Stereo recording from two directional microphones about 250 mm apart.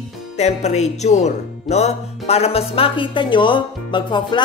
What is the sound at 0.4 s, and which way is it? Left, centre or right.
Speech, left.